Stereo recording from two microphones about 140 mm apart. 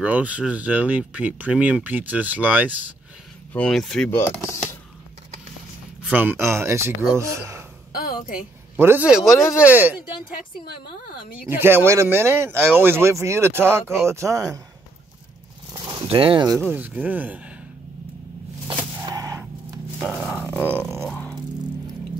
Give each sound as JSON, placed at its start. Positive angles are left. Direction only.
{"t": 0.0, "sound": "speech", "side_deg": -10}
{"t": 3.5, "sound": "speech", "side_deg": 5}
{"t": 4.1, "sound": "speech", "side_deg": 15}
{"t": 6.0, "sound": "speech", "side_deg": -10}
{"t": 7.9, "sound": "a sound", "side_deg": 90}
{"t": 8.7, "sound": "speech", "side_deg": -15}
{"t": 11.4, "sound": "speech", "side_deg": -15}
{"t": 15.8, "sound": "a sound", "side_deg": -30}
{"t": 16.1, "sound": "speech", "side_deg": -40}
{"t": 16.4, "sound": "speech", "side_deg": 0}
{"t": 16.7, "sound": "speech", "side_deg": -10}
{"t": 19.0, "sound": "gunshot", "side_deg": -25}
{"t": 20.0, "sound": "a sound", "side_deg": -5}
{"t": 21.1, "sound": "music", "side_deg": 10}